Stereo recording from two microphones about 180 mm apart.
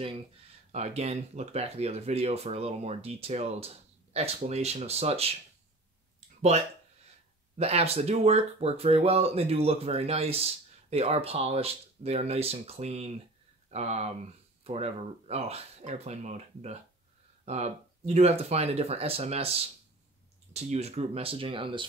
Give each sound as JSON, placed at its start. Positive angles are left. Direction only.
{"t": 0.7, "sound": "speech", "side_deg": -40}
{"t": 7.5, "sound": "speech", "side_deg": -35}
{"t": 20.5, "sound": "speech", "side_deg": -35}